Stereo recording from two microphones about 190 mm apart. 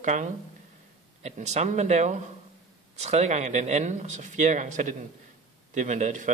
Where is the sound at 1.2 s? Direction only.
35° right (ahead or behind).